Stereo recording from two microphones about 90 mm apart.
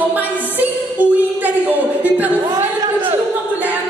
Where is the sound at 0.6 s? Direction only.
20° right (ahead or behind).